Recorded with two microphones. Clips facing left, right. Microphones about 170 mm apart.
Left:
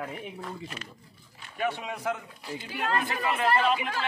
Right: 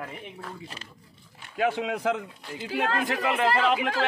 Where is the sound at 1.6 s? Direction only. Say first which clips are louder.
Right 5 dB; 90° right.